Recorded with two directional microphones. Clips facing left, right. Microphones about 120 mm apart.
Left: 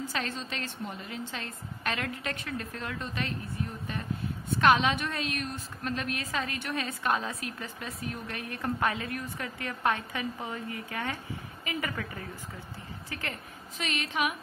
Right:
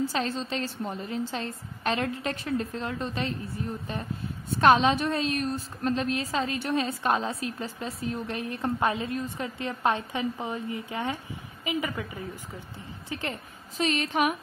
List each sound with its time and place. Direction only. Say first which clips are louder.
0.0 s a woman's voice: right 6 dB; 30° right (ahead or behind)
13.7 s a woman's voice: right 6 dB; 35° right (ahead or behind)